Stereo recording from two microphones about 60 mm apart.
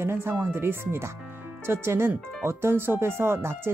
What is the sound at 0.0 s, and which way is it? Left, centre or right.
Speech, right.